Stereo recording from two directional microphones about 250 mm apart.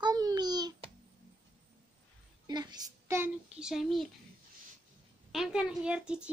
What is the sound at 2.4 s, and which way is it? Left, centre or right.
Child singing, centre.